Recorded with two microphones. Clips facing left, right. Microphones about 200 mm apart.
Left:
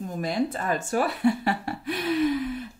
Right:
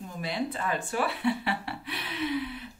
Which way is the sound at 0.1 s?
45° left (ahead or behind).